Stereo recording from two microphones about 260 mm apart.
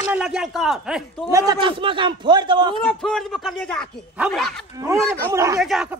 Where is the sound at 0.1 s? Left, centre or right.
Centre.